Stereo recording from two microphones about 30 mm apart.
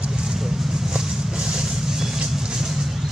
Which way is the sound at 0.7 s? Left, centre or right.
Centre.